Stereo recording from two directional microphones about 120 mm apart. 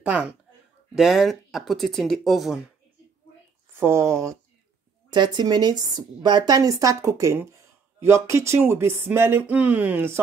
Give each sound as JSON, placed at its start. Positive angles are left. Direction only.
{"t": 0.0, "sound": "speech", "side_deg": -10}
{"t": 3.8, "sound": "speech", "side_deg": -25}
{"t": 5.1, "sound": "a woman's voice", "side_deg": -40}